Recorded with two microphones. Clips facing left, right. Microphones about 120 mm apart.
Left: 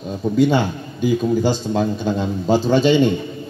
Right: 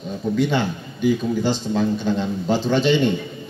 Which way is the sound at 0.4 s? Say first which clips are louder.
Left 6 dB; 40° left (ahead or behind).